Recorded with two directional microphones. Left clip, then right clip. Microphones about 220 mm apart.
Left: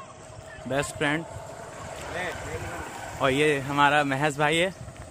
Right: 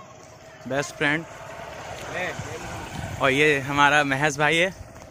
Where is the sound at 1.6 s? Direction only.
30° right (ahead or behind).